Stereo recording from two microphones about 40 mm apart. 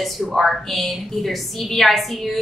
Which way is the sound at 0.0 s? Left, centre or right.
Centre.